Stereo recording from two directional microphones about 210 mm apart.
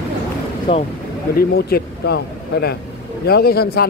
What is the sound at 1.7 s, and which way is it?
A man's voice, 50° left (ahead or behind).